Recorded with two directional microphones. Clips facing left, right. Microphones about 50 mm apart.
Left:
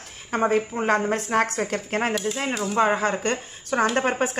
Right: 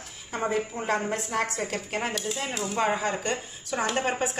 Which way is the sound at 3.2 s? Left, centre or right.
Left.